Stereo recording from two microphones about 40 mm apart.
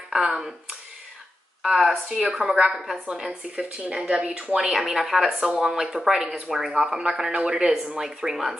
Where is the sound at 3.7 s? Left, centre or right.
Right.